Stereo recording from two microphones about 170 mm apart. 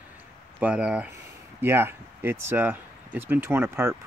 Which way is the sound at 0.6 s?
5° right (ahead or behind).